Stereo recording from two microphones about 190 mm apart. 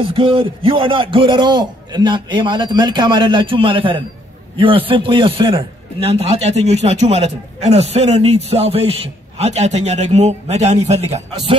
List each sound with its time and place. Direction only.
0.1 s a man's voice: 30° right (ahead or behind)